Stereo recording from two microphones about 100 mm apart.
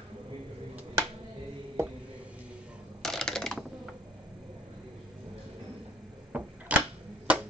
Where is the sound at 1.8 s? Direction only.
25° right (ahead or behind).